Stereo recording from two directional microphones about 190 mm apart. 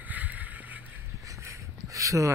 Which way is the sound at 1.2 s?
15° right (ahead or behind).